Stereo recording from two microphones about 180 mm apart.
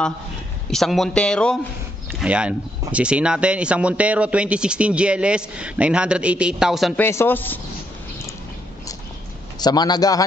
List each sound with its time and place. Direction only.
0.7 s speech: centre (ahead or behind)
2.1 s speech: 5° right (ahead or behind)
7.0 s speech: 15° left (ahead or behind)
9.6 s a man's voice: 20° left (ahead or behind)